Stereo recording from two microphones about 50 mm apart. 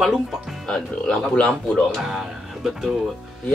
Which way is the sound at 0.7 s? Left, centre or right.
Centre.